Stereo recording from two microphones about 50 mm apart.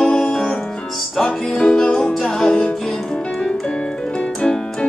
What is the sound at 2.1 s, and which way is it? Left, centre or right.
Music, centre.